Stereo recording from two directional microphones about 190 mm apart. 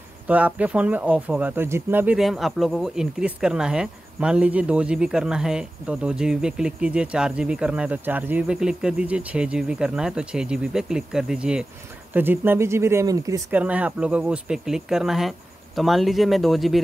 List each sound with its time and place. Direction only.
0.3 s speech: 5° right (ahead or behind)
13.6 s speech: 5° right (ahead or behind)